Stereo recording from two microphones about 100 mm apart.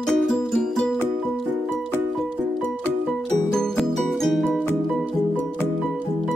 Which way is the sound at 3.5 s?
5° left (ahead or behind).